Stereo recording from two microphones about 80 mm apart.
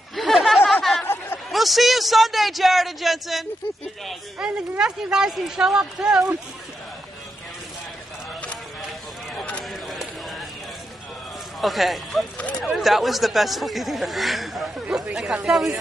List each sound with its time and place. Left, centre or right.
0.1 s chatter: centre
1.0 s chatter: left
1.5 s speech: centre
9.3 s a sound: centre
9.7 s a sound: centre
11.6 s speech: centre
14.9 s speech: centre